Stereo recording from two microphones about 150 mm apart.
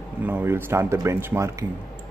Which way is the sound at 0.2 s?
15° right (ahead or behind).